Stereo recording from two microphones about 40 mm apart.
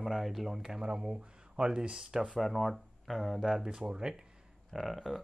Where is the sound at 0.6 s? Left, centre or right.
Centre.